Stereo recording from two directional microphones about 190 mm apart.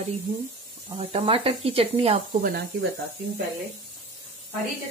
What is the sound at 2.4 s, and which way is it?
Speech, 50° right (ahead or behind).